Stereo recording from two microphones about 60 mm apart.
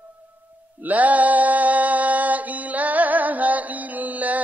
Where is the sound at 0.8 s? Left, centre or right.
Right.